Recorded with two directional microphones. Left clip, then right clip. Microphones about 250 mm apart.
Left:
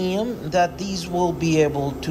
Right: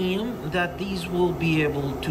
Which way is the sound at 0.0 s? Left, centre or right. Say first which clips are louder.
Left 3 dB; centre.